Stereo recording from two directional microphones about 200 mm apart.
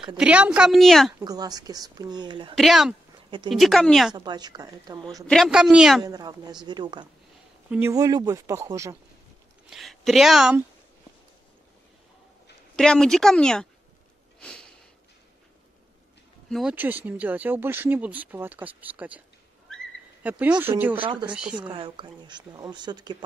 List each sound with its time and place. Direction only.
0.2 s speech: 5° right (ahead or behind)
1.2 s speech: 20° right (ahead or behind)
2.5 s speech: centre (ahead or behind)
4.1 s speech: 20° right (ahead or behind)
5.2 s speech: centre (ahead or behind)
6.0 s speech: 20° right (ahead or behind)
9.7 s speech: centre (ahead or behind)
12.7 s speech: 5° left (ahead or behind)
14.4 s sniff: 5° left (ahead or behind)
16.4 s speech: centre (ahead or behind)
20.2 s speech: 5° right (ahead or behind)
21.0 s speech: 25° right (ahead or behind)
21.3 s speech: 5° right (ahead or behind)
21.5 s speech: 25° right (ahead or behind)